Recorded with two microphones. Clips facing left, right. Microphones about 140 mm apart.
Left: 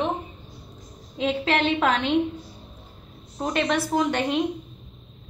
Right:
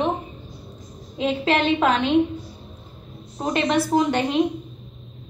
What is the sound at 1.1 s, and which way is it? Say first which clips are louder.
A woman's voice: right 2 dB; 5° right (ahead or behind).